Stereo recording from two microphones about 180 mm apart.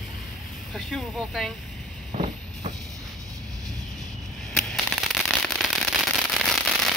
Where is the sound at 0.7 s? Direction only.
Centre (ahead or behind).